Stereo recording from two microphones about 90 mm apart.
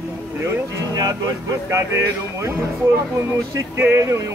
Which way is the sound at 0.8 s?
40° right (ahead or behind).